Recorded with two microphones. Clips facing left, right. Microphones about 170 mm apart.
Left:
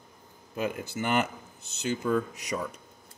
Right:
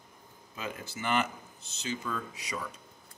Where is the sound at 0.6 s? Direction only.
50° left (ahead or behind).